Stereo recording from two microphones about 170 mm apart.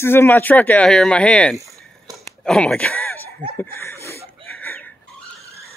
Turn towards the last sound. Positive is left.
turn(degrees=10)  # may be behind; listen again after turning